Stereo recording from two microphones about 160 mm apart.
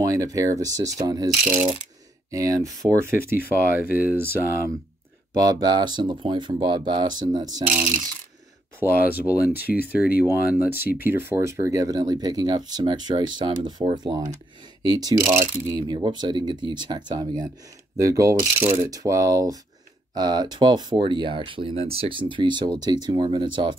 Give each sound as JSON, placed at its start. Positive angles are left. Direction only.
{"t": 0.0, "sound": "speech", "side_deg": -20}
{"t": 2.3, "sound": "speech", "side_deg": -20}
{"t": 5.3, "sound": "speech", "side_deg": -25}
{"t": 8.7, "sound": "speech", "side_deg": -15}
{"t": 9.7, "sound": "speech", "side_deg": 0}
{"t": 10.2, "sound": "speech", "side_deg": -10}